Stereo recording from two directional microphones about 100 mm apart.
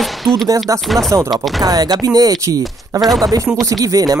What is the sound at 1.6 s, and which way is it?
Speech, 40° right (ahead or behind).